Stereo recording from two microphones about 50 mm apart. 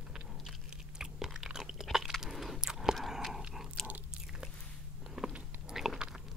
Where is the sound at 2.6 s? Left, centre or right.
Centre.